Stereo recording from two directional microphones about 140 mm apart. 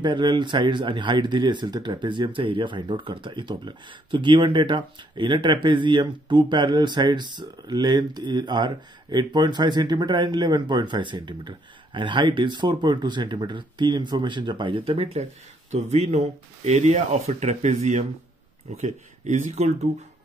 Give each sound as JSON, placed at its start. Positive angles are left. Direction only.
{"t": 0.0, "sound": "speech", "side_deg": -35}
{"t": 15.7, "sound": "speech", "side_deg": -50}